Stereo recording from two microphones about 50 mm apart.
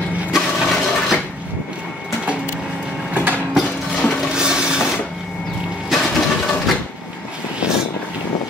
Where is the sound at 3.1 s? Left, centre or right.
Right.